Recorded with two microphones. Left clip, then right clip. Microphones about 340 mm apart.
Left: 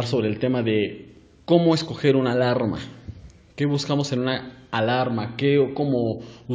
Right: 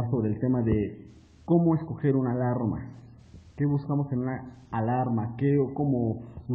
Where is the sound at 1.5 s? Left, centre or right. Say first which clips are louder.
Left 7 dB; right.